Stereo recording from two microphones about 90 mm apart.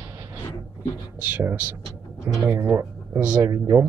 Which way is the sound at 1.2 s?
20° right (ahead or behind).